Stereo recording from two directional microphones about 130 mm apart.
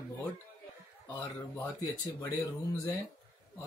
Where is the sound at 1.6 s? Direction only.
25° left (ahead or behind).